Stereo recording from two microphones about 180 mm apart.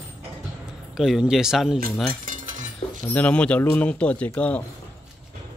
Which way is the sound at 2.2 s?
45° right (ahead or behind).